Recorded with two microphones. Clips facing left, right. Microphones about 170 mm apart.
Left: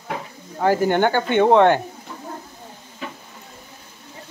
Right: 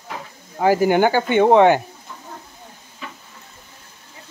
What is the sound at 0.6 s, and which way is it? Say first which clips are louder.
Speech: right 2 dB; 5° right (ahead or behind).